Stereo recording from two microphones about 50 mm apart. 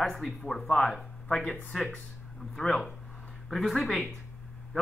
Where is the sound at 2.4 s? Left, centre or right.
Centre.